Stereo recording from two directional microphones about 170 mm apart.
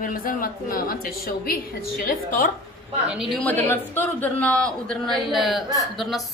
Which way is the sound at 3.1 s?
Centre (ahead or behind).